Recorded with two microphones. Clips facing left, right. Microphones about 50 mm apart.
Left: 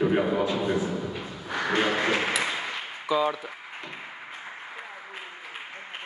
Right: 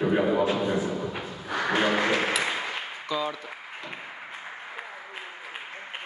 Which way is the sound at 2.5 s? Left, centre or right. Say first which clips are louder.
Right 1 dB; centre.